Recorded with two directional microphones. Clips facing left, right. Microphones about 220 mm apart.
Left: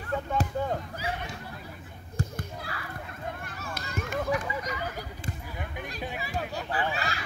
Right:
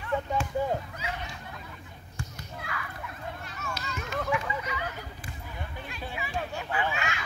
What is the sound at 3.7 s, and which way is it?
Run, 55° left (ahead or behind).